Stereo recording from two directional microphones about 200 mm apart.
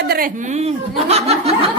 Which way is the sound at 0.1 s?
45° right (ahead or behind).